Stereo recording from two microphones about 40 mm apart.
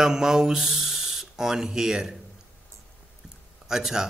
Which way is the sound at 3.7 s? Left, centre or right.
Centre.